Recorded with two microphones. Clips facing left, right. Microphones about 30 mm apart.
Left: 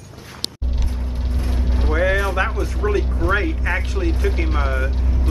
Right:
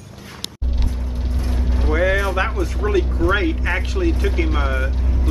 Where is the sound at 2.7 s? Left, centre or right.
Centre.